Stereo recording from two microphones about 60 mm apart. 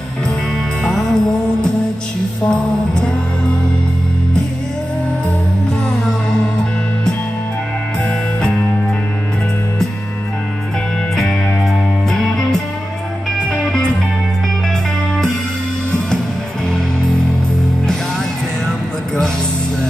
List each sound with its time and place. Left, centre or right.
0.8 s music: centre
8.4 s music: centre
11.1 s music: centre
13.4 s music: centre
18.7 s vehicle: centre